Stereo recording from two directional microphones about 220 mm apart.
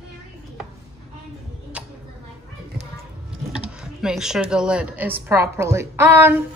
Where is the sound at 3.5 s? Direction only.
5° right (ahead or behind).